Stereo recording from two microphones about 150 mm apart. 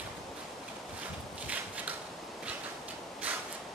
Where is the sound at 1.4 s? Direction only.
10° right (ahead or behind).